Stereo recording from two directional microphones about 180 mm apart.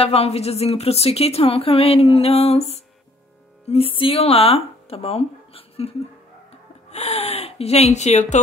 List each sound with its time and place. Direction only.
0.0 s speech: 35° left (ahead or behind)